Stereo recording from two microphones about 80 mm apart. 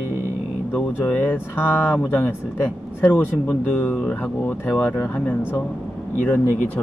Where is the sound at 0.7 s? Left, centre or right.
Left.